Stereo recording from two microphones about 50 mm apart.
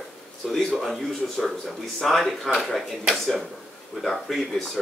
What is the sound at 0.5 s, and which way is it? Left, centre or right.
Speech, centre.